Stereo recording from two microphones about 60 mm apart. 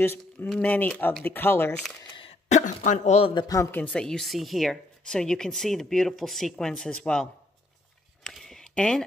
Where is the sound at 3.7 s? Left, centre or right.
Left.